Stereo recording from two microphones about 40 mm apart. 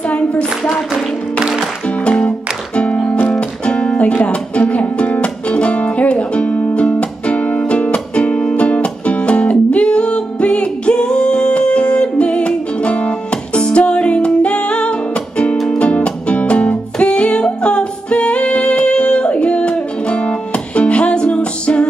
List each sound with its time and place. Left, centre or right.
0.1 s child singing: left
2.0 s music: left
3.1 s music: left
3.3 s music: left
15.5 s music: centre
15.8 s music: left